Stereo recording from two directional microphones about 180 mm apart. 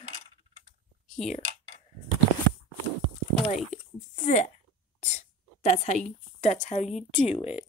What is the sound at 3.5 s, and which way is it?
A woman's voice, 40° left (ahead or behind).